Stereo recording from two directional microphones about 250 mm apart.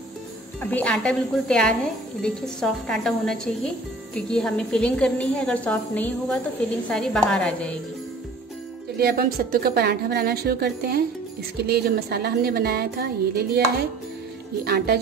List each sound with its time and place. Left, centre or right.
0.6 s a woman's voice: centre
8.9 s a woman's voice: right
14.6 s a woman's voice: right